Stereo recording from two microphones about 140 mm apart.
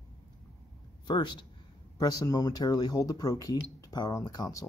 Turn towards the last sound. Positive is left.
turn(degrees=25)  # may be behind; listen again after turning